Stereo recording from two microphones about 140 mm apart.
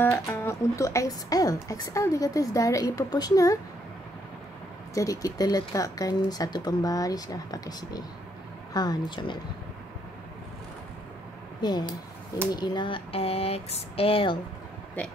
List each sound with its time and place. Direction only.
0.0 s speech: 15° left (ahead or behind)
4.9 s a woman's voice: 25° left (ahead or behind)
12.5 s speech: 30° left (ahead or behind)
15.0 s speech: 10° left (ahead or behind)